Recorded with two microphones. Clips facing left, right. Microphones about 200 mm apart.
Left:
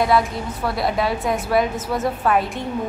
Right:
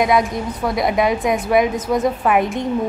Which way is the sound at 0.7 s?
15° right (ahead or behind).